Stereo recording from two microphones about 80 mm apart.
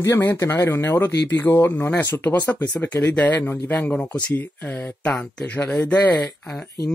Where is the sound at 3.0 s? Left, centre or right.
Centre.